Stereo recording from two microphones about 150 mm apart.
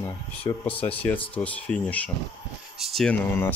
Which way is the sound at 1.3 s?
10° left (ahead or behind).